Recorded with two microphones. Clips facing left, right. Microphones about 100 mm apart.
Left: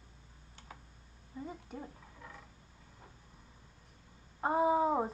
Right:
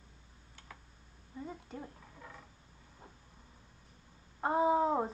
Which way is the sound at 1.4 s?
5° left (ahead or behind).